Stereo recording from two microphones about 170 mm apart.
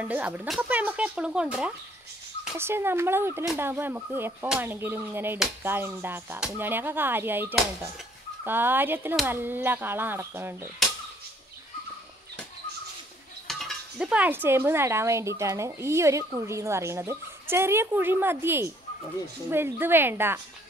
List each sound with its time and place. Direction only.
0.0 s dishes: 10° right (ahead or behind)
13.5 s dishes: centre (ahead or behind)